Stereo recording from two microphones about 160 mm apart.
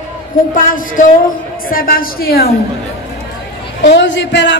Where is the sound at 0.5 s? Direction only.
60° left (ahead or behind).